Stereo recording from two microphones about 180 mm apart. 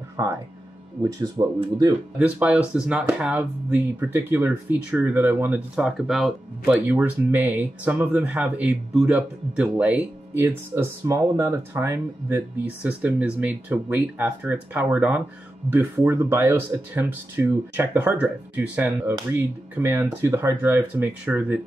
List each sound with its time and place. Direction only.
0.2 s speech: 15° right (ahead or behind)
2.1 s speech: 5° right (ahead or behind)